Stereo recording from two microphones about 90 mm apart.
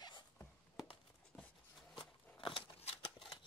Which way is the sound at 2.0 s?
65° left (ahead or behind).